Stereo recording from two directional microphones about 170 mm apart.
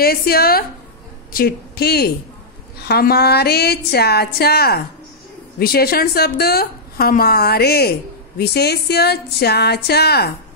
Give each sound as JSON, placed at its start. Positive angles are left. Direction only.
{"t": 0.0, "sound": "a woman's voice", "side_deg": 60}